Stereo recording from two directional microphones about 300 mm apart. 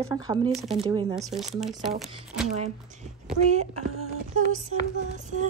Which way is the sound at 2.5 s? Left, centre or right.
Right.